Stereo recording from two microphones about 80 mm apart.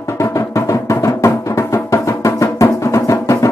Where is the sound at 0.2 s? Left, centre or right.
Left.